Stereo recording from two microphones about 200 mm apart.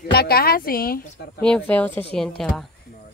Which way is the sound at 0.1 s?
50° left (ahead or behind).